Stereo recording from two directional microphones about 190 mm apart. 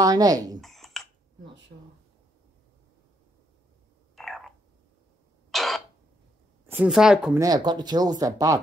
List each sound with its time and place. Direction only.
0.0 s speech: 20° right (ahead or behind)
0.6 s a sound: centre (ahead or behind)
1.4 s a sound: 65° right (ahead or behind)
4.1 s frog: centre (ahead or behind)
5.5 s cough: centre (ahead or behind)
6.7 s speech: 5° right (ahead or behind)
7.3 s speech: 20° right (ahead or behind)